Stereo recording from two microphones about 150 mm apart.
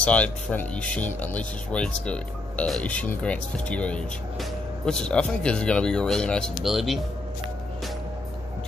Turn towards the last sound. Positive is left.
turn(degrees=0)  # may be behind; listen again after turning